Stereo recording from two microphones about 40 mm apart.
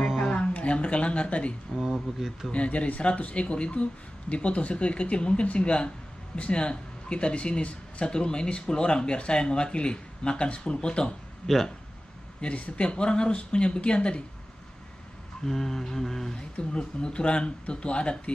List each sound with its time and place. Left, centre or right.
0.2 s speech: left
1.8 s speech: centre
2.5 s speech: left
11.4 s speech: centre
12.4 s speech: left
15.4 s mantra: centre
16.7 s speech: left